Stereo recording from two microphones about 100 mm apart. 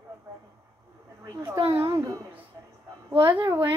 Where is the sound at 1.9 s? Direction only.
35° right (ahead or behind).